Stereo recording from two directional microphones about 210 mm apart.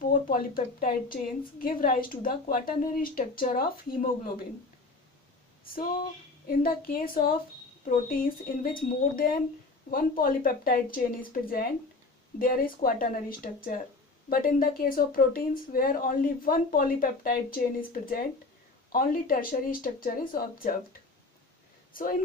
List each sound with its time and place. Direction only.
0.0 s a woman's voice: 40° left (ahead or behind)
6.4 s speech: 45° left (ahead or behind)